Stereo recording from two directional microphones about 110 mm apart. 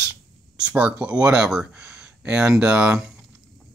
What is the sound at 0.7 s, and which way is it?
Speech, 10° right (ahead or behind).